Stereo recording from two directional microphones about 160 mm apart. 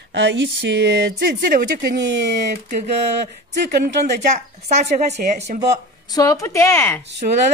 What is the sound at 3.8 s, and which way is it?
A woman's voice, 50° right (ahead or behind).